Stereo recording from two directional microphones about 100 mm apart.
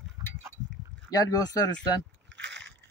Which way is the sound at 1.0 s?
40° left (ahead or behind).